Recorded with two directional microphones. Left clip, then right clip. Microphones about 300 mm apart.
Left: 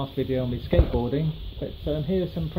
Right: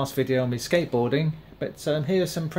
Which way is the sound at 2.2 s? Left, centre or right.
Right.